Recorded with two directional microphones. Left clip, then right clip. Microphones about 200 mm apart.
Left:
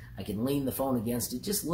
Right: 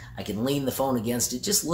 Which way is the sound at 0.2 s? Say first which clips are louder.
Right 4 dB; 15° right (ahead or behind).